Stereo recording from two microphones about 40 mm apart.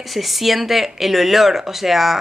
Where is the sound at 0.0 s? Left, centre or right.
Centre.